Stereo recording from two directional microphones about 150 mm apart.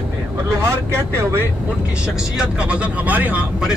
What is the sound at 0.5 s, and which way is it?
Speech, 20° right (ahead or behind).